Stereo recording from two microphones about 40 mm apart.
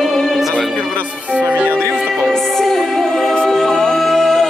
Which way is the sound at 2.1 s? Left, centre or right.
Centre.